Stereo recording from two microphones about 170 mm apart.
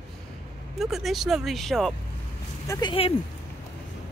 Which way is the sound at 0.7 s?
Centre (ahead or behind).